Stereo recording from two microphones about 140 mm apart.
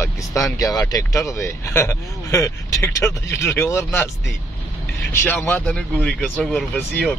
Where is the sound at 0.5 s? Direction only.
25° left (ahead or behind).